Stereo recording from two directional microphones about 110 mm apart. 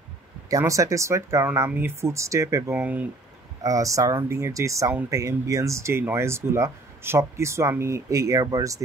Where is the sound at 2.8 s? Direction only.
15° right (ahead or behind).